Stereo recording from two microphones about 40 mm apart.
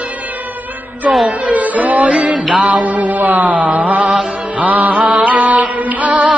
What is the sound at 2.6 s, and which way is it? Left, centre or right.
Mantra, right.